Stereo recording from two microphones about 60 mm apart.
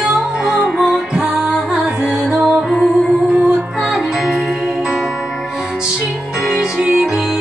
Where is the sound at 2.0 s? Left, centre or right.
Centre.